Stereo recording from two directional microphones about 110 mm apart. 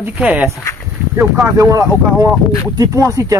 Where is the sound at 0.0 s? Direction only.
10° right (ahead or behind).